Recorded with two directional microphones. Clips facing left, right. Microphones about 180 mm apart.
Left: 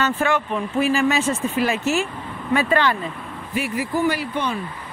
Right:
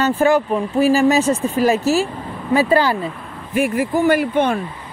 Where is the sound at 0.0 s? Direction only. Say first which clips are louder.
Right 6 dB; 35° right (ahead or behind).